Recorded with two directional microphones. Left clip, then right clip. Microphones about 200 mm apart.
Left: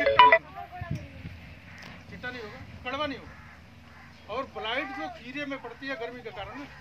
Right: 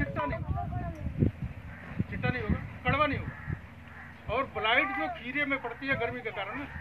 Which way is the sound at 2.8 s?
5° right (ahead or behind).